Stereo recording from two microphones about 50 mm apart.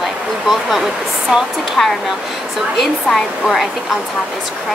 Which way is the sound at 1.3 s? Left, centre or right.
Centre.